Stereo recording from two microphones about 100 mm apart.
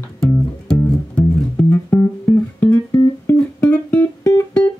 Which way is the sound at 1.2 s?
20° left (ahead or behind).